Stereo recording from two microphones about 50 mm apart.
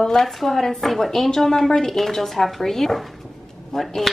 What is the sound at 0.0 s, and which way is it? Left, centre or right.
A woman's voice, centre.